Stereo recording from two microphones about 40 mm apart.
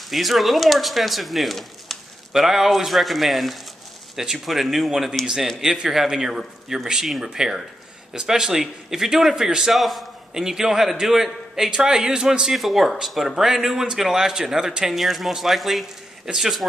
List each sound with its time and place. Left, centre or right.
0.1 s speech: centre
2.3 s speech: centre
5.2 s speech: centre
9.8 s speech: centre
10.3 s speech: centre
12.5 s speech: centre